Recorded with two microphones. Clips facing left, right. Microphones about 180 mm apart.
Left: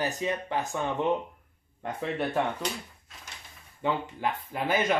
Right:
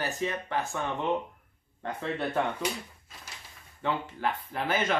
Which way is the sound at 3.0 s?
Centre (ahead or behind).